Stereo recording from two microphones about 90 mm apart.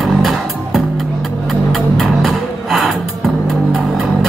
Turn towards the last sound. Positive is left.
turn(degrees=0)  # may be behind; listen again after turning